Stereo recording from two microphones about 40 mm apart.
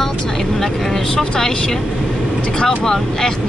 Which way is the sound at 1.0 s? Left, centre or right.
Centre.